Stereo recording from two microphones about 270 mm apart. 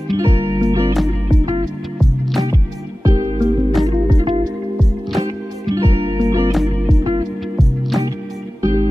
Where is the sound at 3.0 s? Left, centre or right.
Centre.